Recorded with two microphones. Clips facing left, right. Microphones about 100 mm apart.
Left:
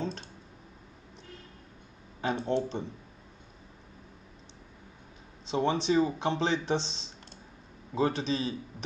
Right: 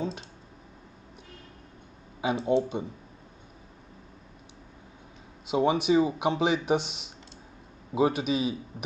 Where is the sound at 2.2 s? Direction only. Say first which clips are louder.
Right 4 dB; 10° right (ahead or behind).